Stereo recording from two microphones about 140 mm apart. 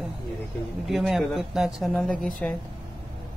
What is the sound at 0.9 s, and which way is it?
Speech, centre (ahead or behind).